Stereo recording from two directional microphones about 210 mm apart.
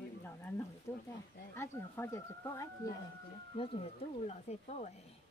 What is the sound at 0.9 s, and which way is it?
Speech, 15° left (ahead or behind).